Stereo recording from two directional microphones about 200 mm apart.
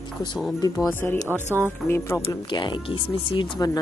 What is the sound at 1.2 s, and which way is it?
Speech, 10° right (ahead or behind).